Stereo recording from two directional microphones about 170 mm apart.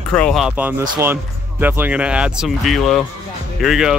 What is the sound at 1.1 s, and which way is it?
A man's voice, 10° right (ahead or behind).